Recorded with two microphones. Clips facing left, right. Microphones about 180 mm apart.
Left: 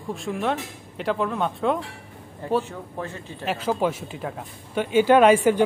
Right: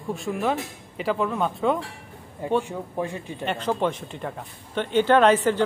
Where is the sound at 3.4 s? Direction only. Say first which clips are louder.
Left 1 dB; 5° left (ahead or behind).